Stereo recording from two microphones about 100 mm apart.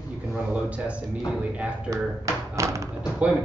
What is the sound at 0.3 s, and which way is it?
Speech, 15° right (ahead or behind).